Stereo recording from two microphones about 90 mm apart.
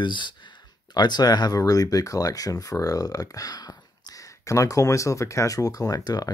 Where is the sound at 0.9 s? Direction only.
50° left (ahead or behind).